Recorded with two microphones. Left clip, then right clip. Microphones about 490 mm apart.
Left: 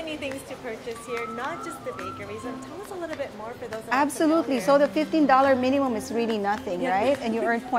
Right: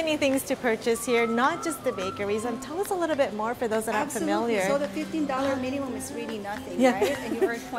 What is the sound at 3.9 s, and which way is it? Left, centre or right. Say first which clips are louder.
A woman's voice: left 5 dB; left.